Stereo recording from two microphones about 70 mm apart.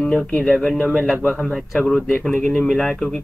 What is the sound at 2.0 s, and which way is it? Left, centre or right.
Speech, left.